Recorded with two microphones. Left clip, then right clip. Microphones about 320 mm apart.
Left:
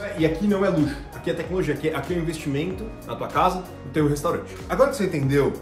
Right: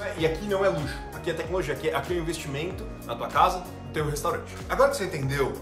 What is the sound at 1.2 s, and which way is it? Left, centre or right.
Speech, centre.